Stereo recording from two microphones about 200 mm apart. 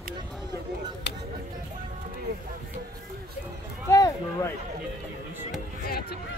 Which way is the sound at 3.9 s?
15° left (ahead or behind).